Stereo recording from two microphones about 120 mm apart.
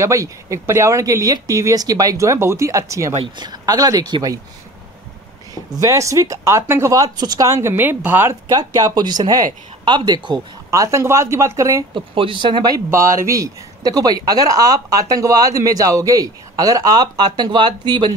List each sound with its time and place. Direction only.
0.0 s speech: 25° right (ahead or behind)
3.3 s speech: 35° right (ahead or behind)
5.7 s speech: 30° right (ahead or behind)
7.6 s speech: 20° right (ahead or behind)
8.5 s speech: 30° right (ahead or behind)
11.9 s speech: 45° right (ahead or behind)